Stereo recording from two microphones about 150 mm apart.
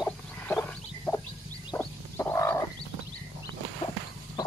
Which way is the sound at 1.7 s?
15° left (ahead or behind).